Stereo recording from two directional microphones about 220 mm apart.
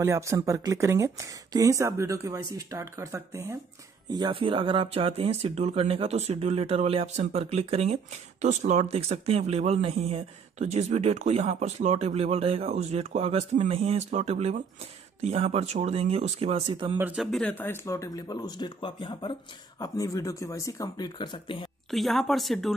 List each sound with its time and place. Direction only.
0.0 s speech: 10° right (ahead or behind)
17.0 s speech: 5° right (ahead or behind); by 21.6 s 20° left (ahead or behind)
21.9 s speech: centre (ahead or behind)